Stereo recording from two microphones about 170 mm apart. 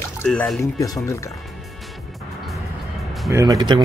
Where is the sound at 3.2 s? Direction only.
20° right (ahead or behind).